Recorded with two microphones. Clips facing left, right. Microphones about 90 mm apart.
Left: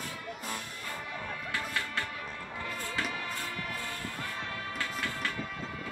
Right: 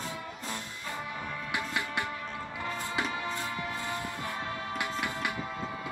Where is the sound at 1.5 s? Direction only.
15° right (ahead or behind).